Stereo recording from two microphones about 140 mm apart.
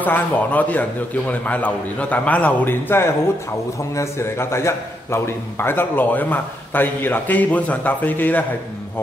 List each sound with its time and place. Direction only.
0.0 s a man's voice: 10° left (ahead or behind)